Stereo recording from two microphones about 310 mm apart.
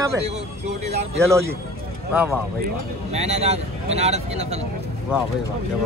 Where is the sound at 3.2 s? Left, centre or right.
Centre.